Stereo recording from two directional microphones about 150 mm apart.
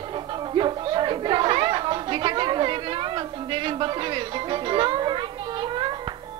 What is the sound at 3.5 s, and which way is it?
Music, 35° right (ahead or behind).